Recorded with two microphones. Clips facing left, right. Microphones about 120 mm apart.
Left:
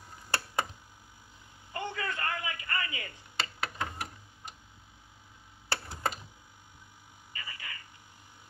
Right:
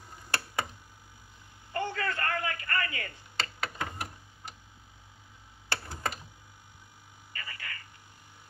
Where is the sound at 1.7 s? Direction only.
15° left (ahead or behind).